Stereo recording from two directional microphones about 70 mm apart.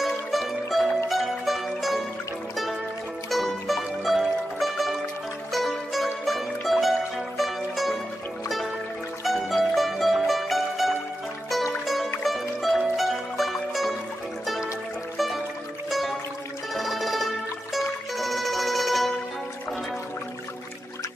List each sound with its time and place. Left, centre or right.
0.0 s music: centre
3.3 s music: centre
9.2 s music: centre
15.1 s music: centre
16.7 s music: centre